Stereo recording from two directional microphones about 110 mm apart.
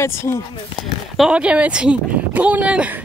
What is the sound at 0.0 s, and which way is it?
Speech, 25° left (ahead or behind).